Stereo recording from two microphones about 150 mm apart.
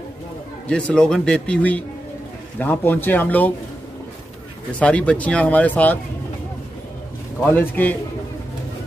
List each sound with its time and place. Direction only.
0.7 s a man's voice: 5° left (ahead or behind)
4.7 s a man's voice: 10° left (ahead or behind)
7.4 s a man's voice: 10° left (ahead or behind)